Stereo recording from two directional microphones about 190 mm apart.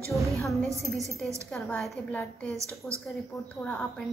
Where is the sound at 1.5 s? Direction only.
Centre (ahead or behind).